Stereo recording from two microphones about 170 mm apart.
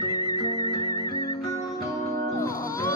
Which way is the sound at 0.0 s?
20° left (ahead or behind).